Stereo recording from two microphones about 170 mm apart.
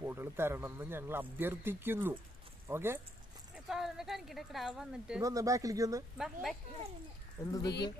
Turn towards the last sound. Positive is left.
turn(degrees=20)  # may be behind; listen again after turning